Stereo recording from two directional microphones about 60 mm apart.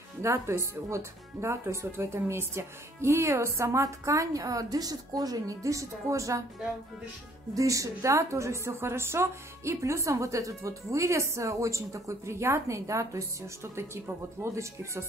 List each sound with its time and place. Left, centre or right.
0.2 s speech: right
7.5 s speech: right
14.4 s speech: right